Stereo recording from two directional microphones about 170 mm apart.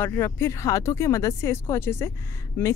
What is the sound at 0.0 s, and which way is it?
Speech, 15° left (ahead or behind).